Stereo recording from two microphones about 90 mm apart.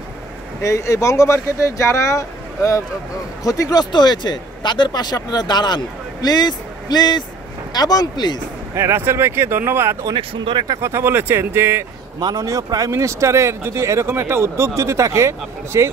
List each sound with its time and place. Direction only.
0.6 s speech: 35° left (ahead or behind)
3.9 s speech: 55° left (ahead or behind)
8.7 s speech: 25° right (ahead or behind)
10.1 s speech: 75° right (ahead or behind)
10.8 s speech: 30° right (ahead or behind)
12.2 s speech: 50° right (ahead or behind)
12.9 s speech: 35° right (ahead or behind)